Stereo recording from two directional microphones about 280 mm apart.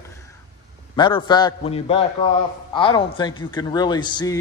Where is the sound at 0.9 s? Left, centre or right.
Centre.